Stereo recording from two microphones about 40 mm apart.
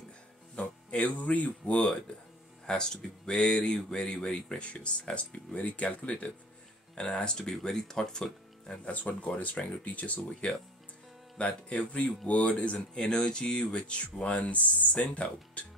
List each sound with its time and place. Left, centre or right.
0.6 s speech: left
1.8 s speech: left
8.8 s speech: left
10.4 s speech: left
12.9 s speech: centre; by 15.6 s left